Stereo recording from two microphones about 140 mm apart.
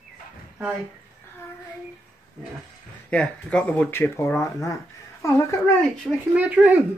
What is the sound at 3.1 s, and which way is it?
Speech, 5° left (ahead or behind).